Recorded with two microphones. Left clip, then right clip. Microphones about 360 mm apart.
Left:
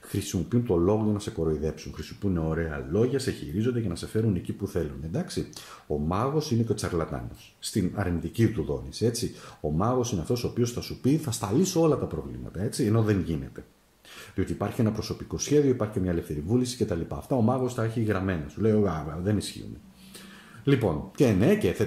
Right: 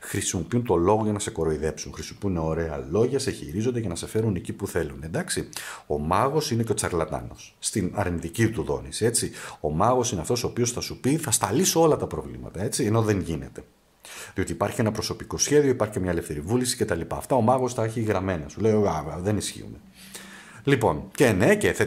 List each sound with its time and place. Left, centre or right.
0.1 s speech: centre
2.5 s speech: centre
20.6 s speech: centre